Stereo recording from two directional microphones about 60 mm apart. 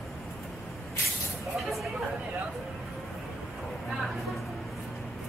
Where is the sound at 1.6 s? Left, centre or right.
Centre.